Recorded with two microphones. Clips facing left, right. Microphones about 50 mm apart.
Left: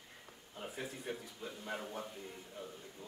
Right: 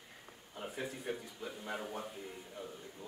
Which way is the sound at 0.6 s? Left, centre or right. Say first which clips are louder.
Right 2 dB; centre.